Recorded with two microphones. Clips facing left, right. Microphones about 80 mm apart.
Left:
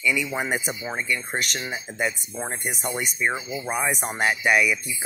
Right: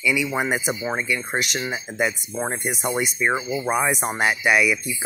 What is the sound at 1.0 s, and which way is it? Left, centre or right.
Speech, centre.